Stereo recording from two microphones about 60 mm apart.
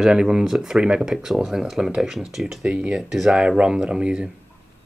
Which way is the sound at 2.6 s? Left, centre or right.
Right.